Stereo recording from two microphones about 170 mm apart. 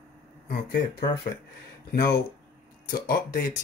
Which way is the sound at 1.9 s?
65° left (ahead or behind).